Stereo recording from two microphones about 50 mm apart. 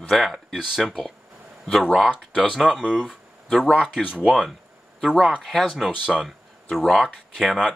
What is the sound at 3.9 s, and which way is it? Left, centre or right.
Speech, centre.